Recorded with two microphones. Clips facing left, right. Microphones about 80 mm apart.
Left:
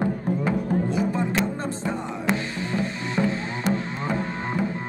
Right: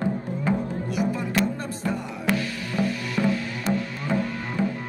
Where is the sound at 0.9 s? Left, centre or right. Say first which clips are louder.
Left 1 dB; left.